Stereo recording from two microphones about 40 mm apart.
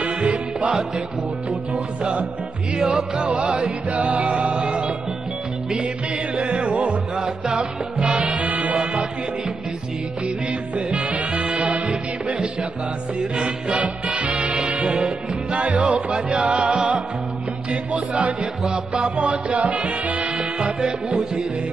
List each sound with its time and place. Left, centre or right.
0.0 s music: right
2.8 s music: centre
3.3 s music: right
6.3 s music: right
10.9 s music: right
13.2 s music: right
13.7 s swing music: right
14.4 s music: right